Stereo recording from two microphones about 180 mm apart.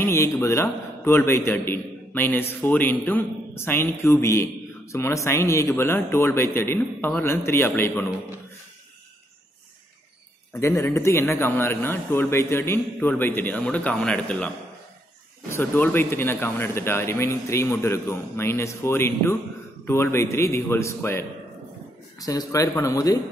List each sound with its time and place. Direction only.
0.0 s a man's voice: 15° left (ahead or behind)
10.5 s a man's voice: 15° left (ahead or behind)
15.5 s a man's voice: 10° left (ahead or behind)